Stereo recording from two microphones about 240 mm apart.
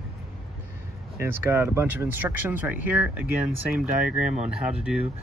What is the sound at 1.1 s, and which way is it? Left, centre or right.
Speech, centre.